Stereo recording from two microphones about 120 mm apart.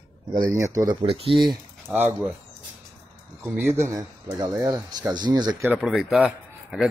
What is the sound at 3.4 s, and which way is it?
Speech, 20° right (ahead or behind).